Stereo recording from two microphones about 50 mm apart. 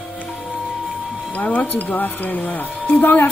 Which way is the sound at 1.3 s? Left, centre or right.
Left.